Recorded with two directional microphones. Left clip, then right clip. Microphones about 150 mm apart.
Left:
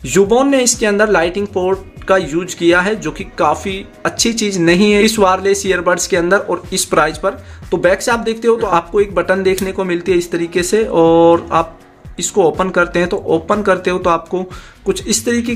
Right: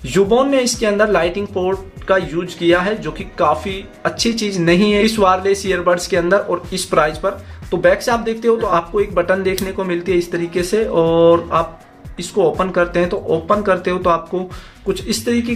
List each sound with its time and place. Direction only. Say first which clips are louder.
0.0 s speech: left 2 dB; 30° left (ahead or behind)